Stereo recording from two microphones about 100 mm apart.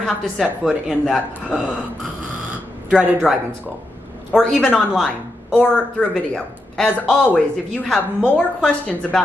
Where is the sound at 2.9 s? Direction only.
5° right (ahead or behind).